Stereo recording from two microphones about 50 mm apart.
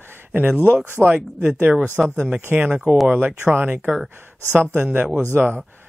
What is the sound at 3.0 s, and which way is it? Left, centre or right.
Speech, right.